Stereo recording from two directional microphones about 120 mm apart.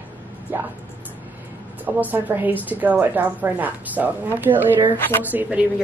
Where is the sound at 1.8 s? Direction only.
15° right (ahead or behind).